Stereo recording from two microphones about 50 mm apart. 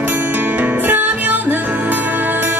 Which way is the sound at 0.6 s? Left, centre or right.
Right.